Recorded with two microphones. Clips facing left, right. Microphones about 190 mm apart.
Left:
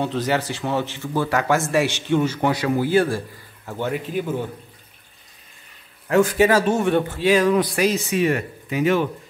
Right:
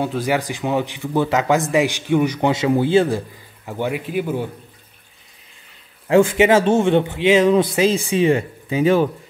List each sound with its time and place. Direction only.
0.0 s speech: 10° right (ahead or behind)
6.0 s speech: 25° right (ahead or behind)